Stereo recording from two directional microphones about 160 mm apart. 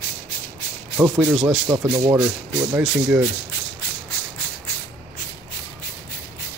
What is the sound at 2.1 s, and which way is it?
Speech, 5° right (ahead or behind).